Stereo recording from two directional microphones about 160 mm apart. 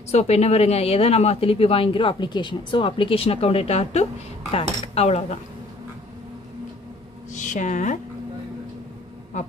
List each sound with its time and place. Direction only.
0.1 s a woman's voice: 45° left (ahead or behind)
7.3 s speech: 50° left (ahead or behind)